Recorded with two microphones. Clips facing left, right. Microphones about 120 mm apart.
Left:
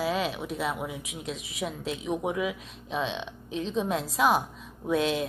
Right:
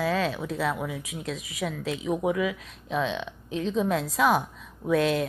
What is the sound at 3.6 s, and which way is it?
Speech, 70° right (ahead or behind).